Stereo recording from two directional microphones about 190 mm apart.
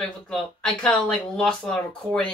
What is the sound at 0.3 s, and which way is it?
Speech, 5° left (ahead or behind).